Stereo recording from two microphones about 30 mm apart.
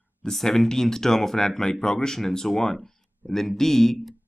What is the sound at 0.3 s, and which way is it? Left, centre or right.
Speech, centre.